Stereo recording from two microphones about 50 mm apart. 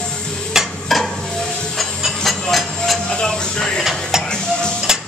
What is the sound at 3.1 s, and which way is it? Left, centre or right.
Music, centre.